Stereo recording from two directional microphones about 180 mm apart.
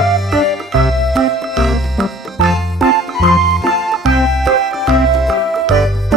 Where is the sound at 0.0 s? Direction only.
Centre (ahead or behind).